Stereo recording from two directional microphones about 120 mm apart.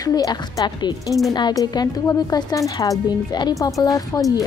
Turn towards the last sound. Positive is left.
turn(degrees=30)  # may be behind; listen again after turning